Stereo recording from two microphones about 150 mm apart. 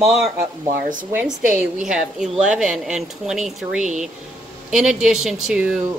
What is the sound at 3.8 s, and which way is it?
Speech, 55° right (ahead or behind).